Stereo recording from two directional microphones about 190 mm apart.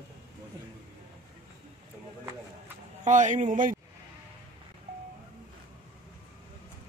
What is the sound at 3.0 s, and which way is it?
Speech, 40° right (ahead or behind).